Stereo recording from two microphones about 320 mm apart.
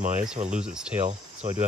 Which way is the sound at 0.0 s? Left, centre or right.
Right.